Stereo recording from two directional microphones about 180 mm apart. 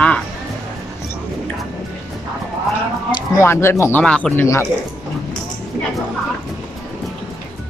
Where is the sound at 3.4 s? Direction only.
15° left (ahead or behind).